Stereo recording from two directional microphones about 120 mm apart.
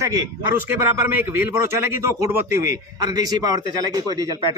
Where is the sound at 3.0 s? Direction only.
35° right (ahead or behind).